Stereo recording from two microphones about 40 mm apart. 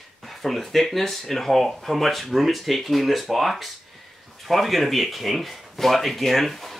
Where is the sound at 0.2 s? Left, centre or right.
Centre.